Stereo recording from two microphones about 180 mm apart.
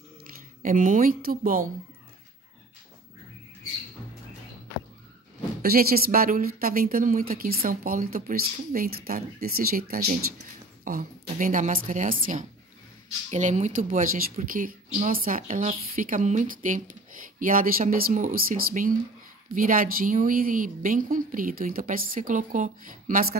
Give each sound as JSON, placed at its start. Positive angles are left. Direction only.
{"t": 0.6, "sound": "a woman's voice", "side_deg": -45}
{"t": 5.6, "sound": "a woman's voice", "side_deg": -55}